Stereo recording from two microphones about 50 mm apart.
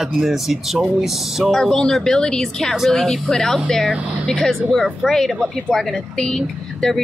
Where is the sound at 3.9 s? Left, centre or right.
Right.